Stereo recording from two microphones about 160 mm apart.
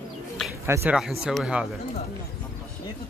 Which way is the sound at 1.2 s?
5° right (ahead or behind).